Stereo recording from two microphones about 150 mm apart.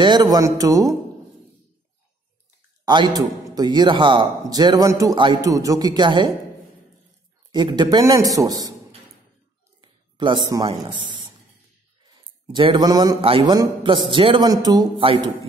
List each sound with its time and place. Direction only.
0.0 s a man's voice: 30° right (ahead or behind)
2.8 s a man's voice: 30° right (ahead or behind)
7.5 s a man's voice: 30° right (ahead or behind)
9.8 s a sound: 30° right (ahead or behind)
12.1 s a man's voice: 30° right (ahead or behind)